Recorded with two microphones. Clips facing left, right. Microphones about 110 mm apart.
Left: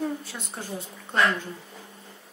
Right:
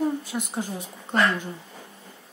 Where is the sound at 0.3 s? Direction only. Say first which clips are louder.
Right 6 dB; 15° right (ahead or behind).